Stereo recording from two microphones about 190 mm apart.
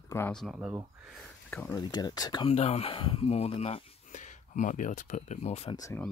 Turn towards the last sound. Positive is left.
turn(degrees=15)  # may be behind; listen again after turning